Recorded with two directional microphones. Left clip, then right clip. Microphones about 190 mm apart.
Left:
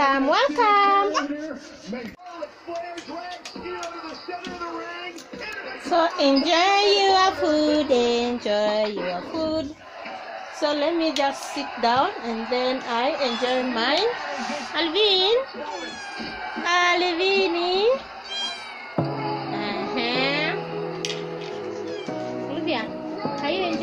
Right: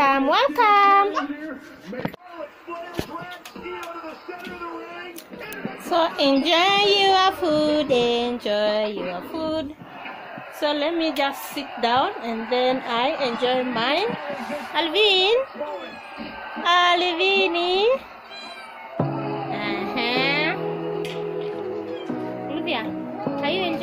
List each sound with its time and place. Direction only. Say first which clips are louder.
0.0 s a sound: right 1 dB; 5° right (ahead or behind)
5.9 s child singing: even; centre (ahead or behind)
10.6 s a woman's voice: even; 10° right (ahead or behind)
14.7 s child singing: right 2 dB; centre (ahead or behind)
16.6 s child singing: right 2 dB; 5° right (ahead or behind)
19.6 s a sound: right 2 dB; 5° right (ahead or behind)
23.4 s speech: right 1 dB; centre (ahead or behind)